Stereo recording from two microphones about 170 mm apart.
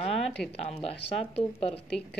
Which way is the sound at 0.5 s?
35° left (ahead or behind).